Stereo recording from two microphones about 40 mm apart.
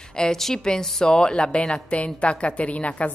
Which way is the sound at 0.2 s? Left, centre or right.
Centre.